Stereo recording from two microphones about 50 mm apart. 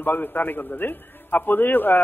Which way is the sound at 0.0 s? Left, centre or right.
Left.